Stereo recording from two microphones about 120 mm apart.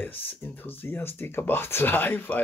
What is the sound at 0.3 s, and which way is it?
Speech, 15° left (ahead or behind).